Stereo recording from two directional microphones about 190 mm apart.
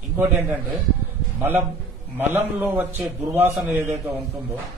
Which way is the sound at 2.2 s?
10° right (ahead or behind).